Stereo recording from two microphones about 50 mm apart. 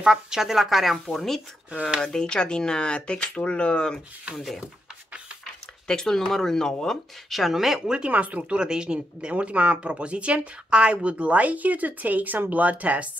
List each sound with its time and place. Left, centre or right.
0.0 s speech: centre
4.4 s speech: centre
5.9 s speech: centre
7.2 s speech: centre
8.1 s a woman's voice: right